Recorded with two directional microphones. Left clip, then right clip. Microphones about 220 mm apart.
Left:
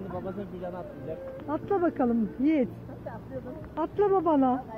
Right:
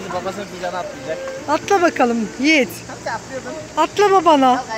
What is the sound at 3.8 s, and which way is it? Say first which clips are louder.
Speech: right 12 dB; 5° right (ahead or behind).